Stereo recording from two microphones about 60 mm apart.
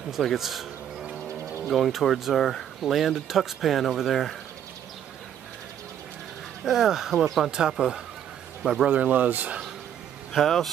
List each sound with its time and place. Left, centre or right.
0.1 s speech: centre
6.6 s speech: centre
8.8 s speech: right
10.3 s speech: centre